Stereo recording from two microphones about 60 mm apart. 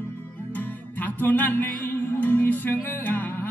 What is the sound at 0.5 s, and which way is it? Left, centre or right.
Music, left.